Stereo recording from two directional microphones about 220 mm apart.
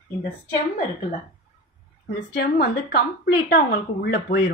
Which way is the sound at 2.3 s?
45° left (ahead or behind).